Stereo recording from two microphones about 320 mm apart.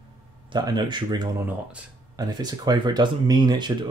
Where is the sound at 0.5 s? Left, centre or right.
Centre.